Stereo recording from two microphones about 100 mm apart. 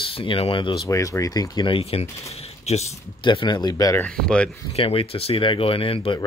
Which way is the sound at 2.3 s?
90° left.